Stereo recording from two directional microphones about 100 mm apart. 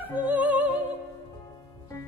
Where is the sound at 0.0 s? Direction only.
15° right (ahead or behind).